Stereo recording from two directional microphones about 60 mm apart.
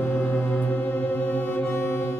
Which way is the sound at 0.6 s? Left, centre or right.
Left.